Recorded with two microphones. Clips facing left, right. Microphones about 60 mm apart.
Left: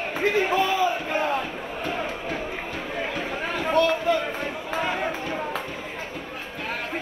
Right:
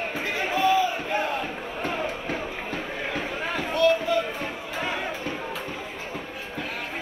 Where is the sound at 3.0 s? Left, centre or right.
Right.